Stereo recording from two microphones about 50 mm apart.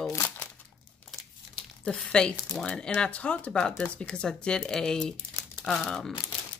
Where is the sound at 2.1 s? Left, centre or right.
Centre.